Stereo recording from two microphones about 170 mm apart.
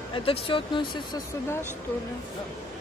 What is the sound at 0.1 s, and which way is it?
A woman's voice, 30° left (ahead or behind).